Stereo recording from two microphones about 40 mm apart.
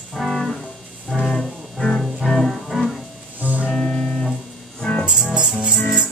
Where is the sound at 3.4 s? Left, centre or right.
Right.